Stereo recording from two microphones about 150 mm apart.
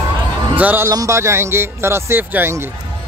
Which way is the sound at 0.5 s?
15° right (ahead or behind).